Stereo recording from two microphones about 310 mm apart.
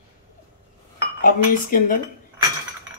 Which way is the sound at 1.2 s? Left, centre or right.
Left.